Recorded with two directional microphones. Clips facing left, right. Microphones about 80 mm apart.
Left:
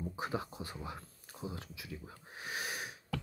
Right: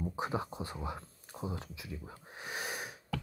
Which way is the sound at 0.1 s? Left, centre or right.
Right.